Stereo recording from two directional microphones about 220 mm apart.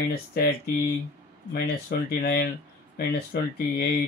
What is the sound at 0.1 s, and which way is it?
Speech, 45° left (ahead or behind).